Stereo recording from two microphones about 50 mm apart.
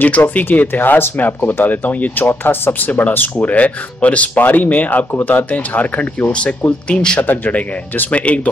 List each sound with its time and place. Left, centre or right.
0.0 s speech: left
2.2 s speech: left
6.9 s speech: centre
7.2 s speech: left